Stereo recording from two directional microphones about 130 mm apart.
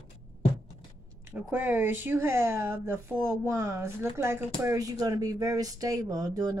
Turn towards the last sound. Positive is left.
turn(degrees=-25)  # may be behind; listen again after turning